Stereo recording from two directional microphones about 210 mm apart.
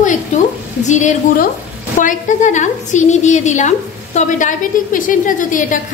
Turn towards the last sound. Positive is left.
turn(degrees=40)  # may be behind; listen again after turning